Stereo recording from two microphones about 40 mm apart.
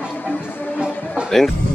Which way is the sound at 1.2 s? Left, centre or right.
Centre.